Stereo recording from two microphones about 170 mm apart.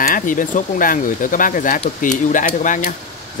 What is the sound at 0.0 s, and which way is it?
Speech, 55° left (ahead or behind).